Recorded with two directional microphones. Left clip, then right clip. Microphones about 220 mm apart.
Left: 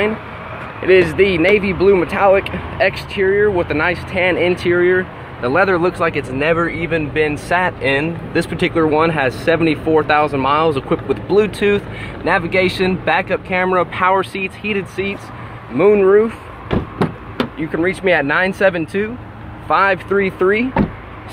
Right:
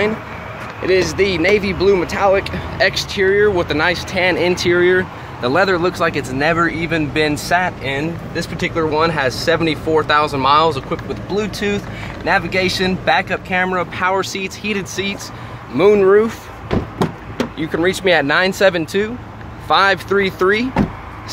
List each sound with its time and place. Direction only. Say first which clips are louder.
0.8 s speech: left 3 dB; 25° left (ahead or behind); by 7.5 s 5° right (ahead or behind)
7.8 s speech: left 4 dB; 25° left (ahead or behind)
8.8 s speech: even; 10° left (ahead or behind)
10.7 s speech: left 4 dB; 20° left (ahead or behind)
17.6 s speech: right 2 dB; 5° right (ahead or behind)